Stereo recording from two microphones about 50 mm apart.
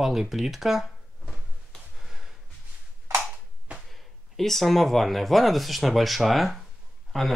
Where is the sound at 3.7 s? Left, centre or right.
Right.